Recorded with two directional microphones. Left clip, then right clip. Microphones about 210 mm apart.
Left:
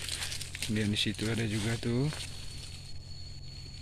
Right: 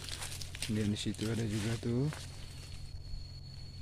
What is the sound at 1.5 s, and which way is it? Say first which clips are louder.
Speech: left 4 dB; 15° left (ahead or behind).